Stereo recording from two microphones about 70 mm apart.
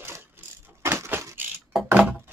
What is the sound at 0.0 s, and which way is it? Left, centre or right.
Crushing, right.